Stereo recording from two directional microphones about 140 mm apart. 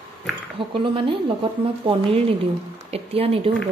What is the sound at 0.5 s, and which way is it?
Speech, 40° right (ahead or behind).